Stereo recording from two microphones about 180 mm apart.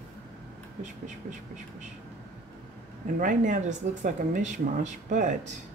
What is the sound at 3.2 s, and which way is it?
Speech, 45° right (ahead or behind).